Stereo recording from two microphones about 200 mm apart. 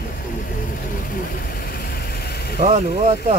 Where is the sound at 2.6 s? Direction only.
35° right (ahead or behind).